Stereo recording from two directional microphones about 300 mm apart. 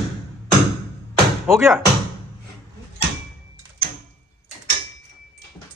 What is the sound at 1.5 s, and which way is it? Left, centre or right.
Speech, centre.